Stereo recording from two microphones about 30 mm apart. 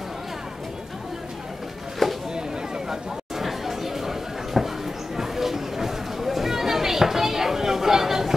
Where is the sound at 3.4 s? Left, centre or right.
Centre.